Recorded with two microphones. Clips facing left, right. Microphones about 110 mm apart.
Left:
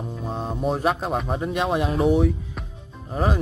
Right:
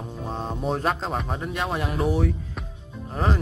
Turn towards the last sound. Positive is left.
turn(degrees=10)  # may be behind; listen again after turning